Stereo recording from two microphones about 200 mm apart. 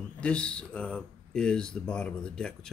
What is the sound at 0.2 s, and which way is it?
Speech, 5° left (ahead or behind).